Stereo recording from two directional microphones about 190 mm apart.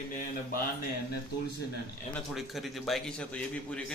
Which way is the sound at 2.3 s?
Centre (ahead or behind).